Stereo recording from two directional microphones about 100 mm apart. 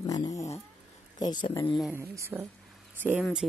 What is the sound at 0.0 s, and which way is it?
Cat, 35° left (ahead or behind).